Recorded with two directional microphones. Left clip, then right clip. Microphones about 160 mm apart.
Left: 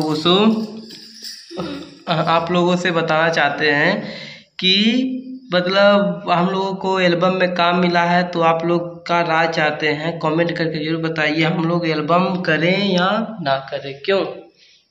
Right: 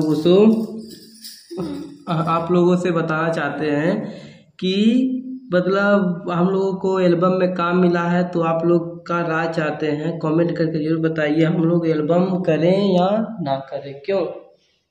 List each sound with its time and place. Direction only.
0.1 s a man's voice: 15° right (ahead or behind)
2.0 s a man's voice: 15° right (ahead or behind)
5.5 s mantra: 20° right (ahead or behind)
12.7 s speech: 10° left (ahead or behind)
13.1 s mantra: 20° right (ahead or behind)